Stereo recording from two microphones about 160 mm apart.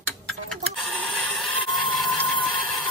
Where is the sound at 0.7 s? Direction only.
Centre (ahead or behind).